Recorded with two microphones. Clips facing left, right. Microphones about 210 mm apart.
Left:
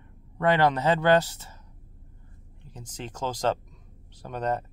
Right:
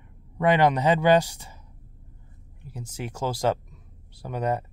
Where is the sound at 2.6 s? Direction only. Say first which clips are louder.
Right 4 dB; 10° right (ahead or behind).